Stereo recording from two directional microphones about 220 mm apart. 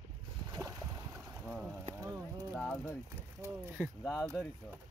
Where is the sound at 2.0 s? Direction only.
15° right (ahead or behind).